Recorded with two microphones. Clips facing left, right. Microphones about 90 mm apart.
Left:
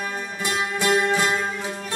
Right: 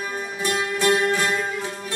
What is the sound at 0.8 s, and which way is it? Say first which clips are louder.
Music: even; 15° left (ahead or behind).